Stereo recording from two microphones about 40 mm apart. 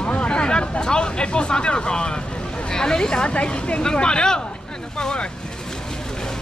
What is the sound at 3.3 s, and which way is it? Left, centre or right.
Speech, left.